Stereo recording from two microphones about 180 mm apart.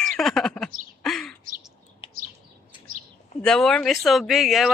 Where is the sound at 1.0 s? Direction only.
Centre (ahead or behind).